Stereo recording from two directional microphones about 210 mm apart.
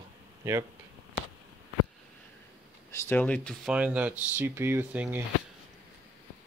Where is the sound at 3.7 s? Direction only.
5° right (ahead or behind).